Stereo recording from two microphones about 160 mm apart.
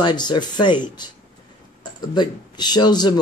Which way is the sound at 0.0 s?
25° left (ahead or behind).